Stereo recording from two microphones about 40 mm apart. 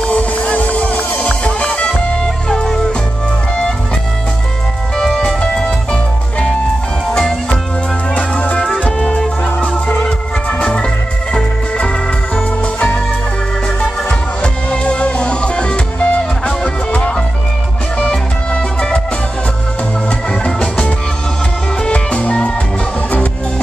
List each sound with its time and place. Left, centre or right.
0.1 s music: left
2.5 s music: centre
4.9 s music: centre
7.1 s music: centre
8.1 s music: left
10.6 s organ: centre
12.7 s music: left
14.4 s music: left
20.2 s music: left